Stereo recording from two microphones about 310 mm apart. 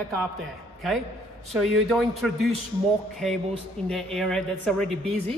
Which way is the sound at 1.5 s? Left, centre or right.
Centre.